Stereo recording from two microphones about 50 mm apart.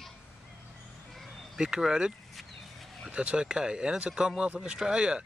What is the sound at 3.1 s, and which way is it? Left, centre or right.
Speech, right.